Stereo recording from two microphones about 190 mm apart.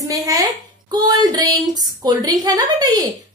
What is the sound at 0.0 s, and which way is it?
A woman's voice, 20° right (ahead or behind).